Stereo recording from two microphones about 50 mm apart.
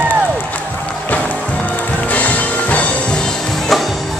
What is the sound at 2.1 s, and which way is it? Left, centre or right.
Music, left.